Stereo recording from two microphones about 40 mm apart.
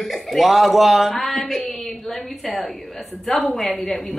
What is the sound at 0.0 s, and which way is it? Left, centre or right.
Speech, centre.